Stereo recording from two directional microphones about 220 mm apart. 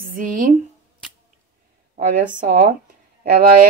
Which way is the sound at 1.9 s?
40° right (ahead or behind).